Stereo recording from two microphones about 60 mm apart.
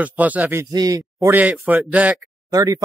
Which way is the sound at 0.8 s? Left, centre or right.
Right.